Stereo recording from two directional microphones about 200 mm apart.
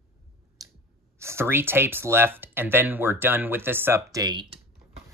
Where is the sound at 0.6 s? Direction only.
20° right (ahead or behind).